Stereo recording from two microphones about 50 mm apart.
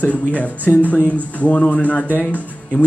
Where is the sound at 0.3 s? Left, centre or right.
Left.